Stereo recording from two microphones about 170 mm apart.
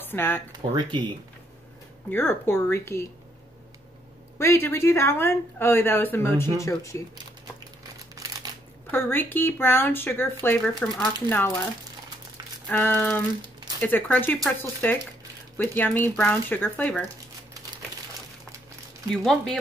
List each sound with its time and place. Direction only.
0.0 s speech: 10° left (ahead or behind)
0.6 s speech: 30° right (ahead or behind)
2.0 s speech: 15° left (ahead or behind)
4.4 s speech: 15° left (ahead or behind)
8.1 s a sound: 20° right (ahead or behind)
8.9 s speech: 10° left (ahead or behind)
12.6 s speech: 10° left (ahead or behind)
19.0 s speech: 5° left (ahead or behind)